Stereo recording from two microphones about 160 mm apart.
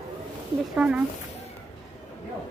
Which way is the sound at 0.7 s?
5° right (ahead or behind).